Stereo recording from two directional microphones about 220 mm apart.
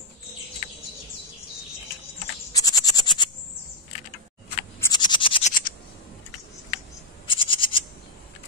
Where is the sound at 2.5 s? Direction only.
15° left (ahead or behind).